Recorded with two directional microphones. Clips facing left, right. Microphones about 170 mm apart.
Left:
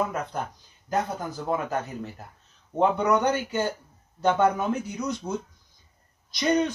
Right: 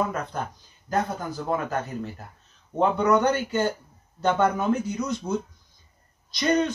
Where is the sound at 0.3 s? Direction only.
15° left (ahead or behind).